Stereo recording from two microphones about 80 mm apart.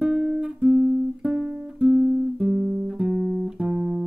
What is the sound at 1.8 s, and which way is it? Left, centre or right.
Guitar, centre.